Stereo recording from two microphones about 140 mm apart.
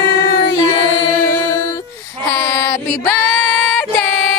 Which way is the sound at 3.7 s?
10° left (ahead or behind).